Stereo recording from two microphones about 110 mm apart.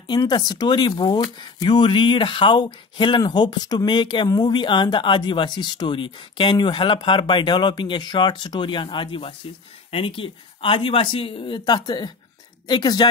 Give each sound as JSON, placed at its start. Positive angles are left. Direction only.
{"t": 0.0, "sound": "speech", "side_deg": 40}